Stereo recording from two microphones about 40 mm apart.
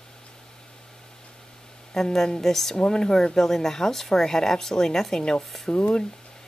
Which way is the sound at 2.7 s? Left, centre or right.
Centre.